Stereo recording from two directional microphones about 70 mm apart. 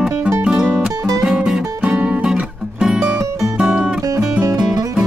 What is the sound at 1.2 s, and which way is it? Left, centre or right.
Music, centre.